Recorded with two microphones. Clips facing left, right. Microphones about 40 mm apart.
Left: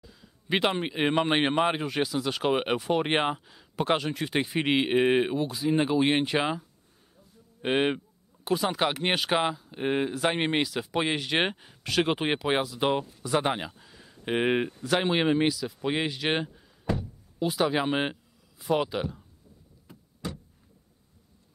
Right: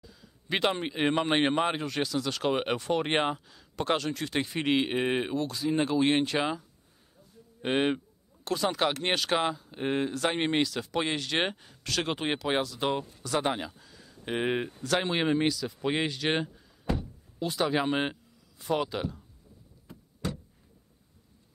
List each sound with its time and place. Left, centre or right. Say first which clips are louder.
0.0 s a man's voice: even; centre